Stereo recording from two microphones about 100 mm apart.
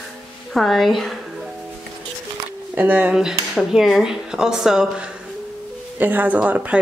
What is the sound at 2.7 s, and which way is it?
Speech, 15° right (ahead or behind).